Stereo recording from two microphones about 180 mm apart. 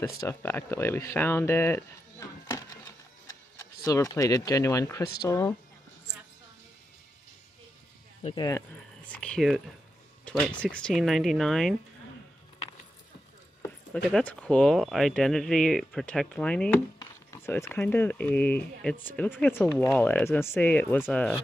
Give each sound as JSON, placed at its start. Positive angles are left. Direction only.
{"t": 0.0, "sound": "speech", "side_deg": 15}
{"t": 8.4, "sound": "speech", "side_deg": 15}
{"t": 9.0, "sound": "speech", "side_deg": 5}
{"t": 10.6, "sound": "speech", "side_deg": 5}
{"t": 13.9, "sound": "speech", "side_deg": 5}
{"t": 17.0, "sound": "speech", "side_deg": 15}